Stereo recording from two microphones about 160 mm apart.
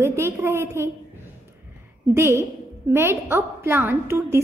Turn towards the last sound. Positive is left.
turn(degrees=-15)  # may be behind; listen again after turning